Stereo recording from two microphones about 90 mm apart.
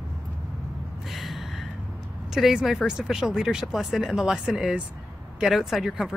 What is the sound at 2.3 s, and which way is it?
Speech, 5° right (ahead or behind).